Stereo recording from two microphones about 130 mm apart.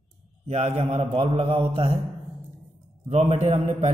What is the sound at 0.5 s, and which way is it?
A man's voice, 60° right (ahead or behind).